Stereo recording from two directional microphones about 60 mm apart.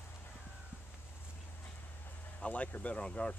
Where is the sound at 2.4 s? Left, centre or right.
Left.